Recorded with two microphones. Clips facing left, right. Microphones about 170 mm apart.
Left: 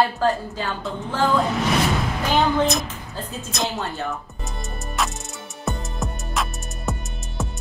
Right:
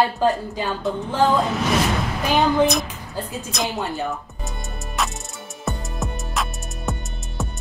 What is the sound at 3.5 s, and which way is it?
Speech, centre (ahead or behind).